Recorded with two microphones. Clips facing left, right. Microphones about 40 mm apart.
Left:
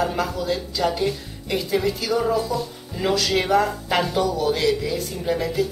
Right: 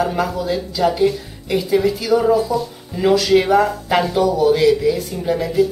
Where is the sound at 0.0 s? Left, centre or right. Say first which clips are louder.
Right 4 dB; centre.